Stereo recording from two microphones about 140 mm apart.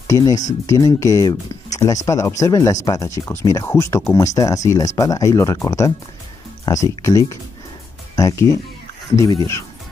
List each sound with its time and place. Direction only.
0.0 s speech: 25° left (ahead or behind)